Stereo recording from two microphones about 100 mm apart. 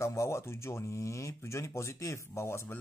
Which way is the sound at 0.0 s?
30° left (ahead or behind).